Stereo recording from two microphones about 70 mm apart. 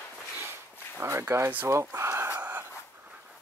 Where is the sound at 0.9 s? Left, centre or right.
Right.